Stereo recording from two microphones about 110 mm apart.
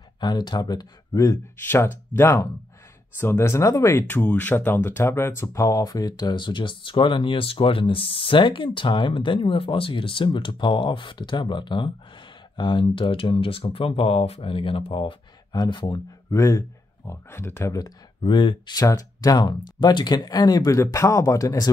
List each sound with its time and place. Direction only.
0.2 s speech: 40° left (ahead or behind)
1.6 s speech: 20° left (ahead or behind)
4.1 s speech: 15° left (ahead or behind); by 15.1 s 55° left (ahead or behind)
15.5 s speech: 35° left (ahead or behind)
16.3 s speech: 25° left (ahead or behind)
17.7 s speech: 40° left (ahead or behind)
18.8 s speech: 35° left (ahead or behind)